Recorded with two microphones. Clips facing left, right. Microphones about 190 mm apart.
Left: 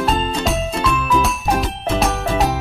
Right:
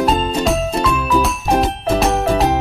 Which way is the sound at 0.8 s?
Centre (ahead or behind).